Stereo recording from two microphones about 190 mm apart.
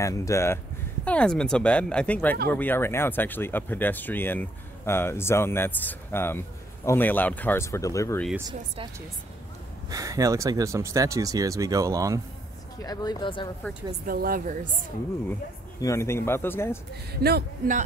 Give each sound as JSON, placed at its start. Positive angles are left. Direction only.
{"t": 0.0, "sound": "speech", "side_deg": 15}
{"t": 9.8, "sound": "speech", "side_deg": -15}
{"t": 12.8, "sound": "speech", "side_deg": 20}
{"t": 14.0, "sound": "speech", "side_deg": -50}
{"t": 15.8, "sound": "speech", "side_deg": 15}
{"t": 17.1, "sound": "speech", "side_deg": -55}